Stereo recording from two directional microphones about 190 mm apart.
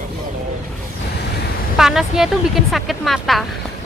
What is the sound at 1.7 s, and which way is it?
Speech, centre (ahead or behind).